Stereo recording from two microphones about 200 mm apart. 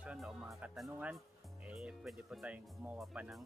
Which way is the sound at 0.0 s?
5° right (ahead or behind).